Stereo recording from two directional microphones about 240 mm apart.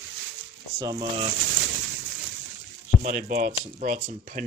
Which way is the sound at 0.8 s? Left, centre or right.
Centre.